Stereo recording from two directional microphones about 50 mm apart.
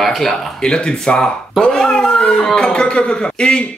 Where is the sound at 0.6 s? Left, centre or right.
Centre.